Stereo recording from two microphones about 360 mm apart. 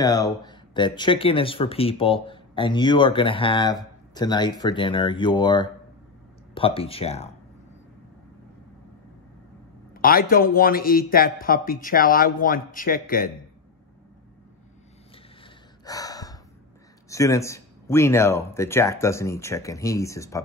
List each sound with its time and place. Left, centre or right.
0.0 s speech: centre
9.9 s a man's voice: left
15.4 s gasp: centre
17.1 s speech: centre